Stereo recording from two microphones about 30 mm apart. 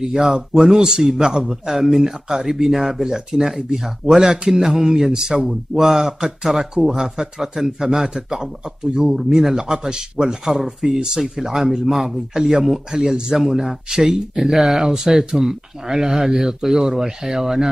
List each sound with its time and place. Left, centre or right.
0.0 s speech: centre
10.4 s speech: centre
10.8 s speech: centre